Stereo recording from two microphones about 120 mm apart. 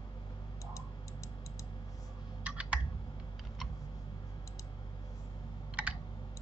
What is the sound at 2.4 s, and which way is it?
Computer keyboard, 10° right (ahead or behind).